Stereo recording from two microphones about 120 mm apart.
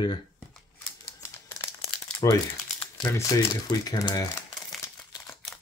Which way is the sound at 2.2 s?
30° left (ahead or behind).